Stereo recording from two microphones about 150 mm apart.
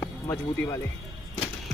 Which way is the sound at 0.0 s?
20° left (ahead or behind).